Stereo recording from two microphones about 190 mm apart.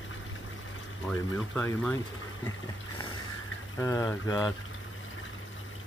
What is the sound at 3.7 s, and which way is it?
Speech, 15° left (ahead or behind).